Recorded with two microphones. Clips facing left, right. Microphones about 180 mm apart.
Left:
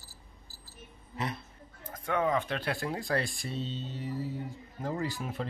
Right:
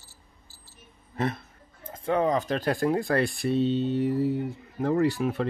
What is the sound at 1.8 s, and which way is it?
Speech, 25° right (ahead or behind).